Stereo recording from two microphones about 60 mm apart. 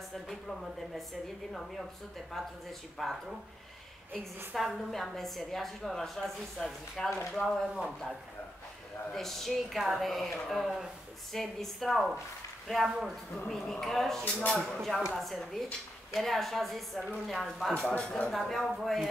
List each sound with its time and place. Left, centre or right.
0.3 s a woman's voice: centre
4.6 s a woman's voice: centre
9.1 s a woman's voice: centre
14.2 s speech: centre
14.8 s a woman's voice: centre
17.9 s speech: centre
18.3 s a woman's voice: centre